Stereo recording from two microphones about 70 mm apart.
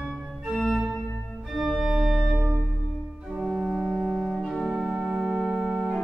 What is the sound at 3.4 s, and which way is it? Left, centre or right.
Organ, centre.